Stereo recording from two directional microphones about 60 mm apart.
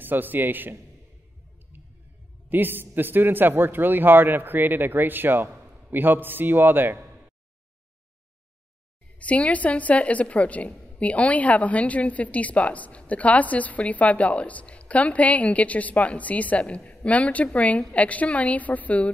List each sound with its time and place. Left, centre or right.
0.0 s a man's voice: right
2.5 s a man's voice: right
9.2 s a woman's voice: left